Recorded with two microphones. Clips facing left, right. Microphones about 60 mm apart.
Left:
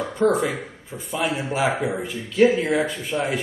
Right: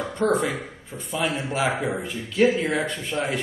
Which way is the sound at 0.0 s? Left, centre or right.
Centre.